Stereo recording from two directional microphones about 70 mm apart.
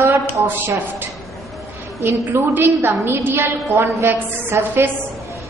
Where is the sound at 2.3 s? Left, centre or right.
Right.